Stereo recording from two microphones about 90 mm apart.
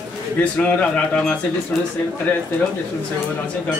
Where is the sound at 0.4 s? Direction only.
15° left (ahead or behind).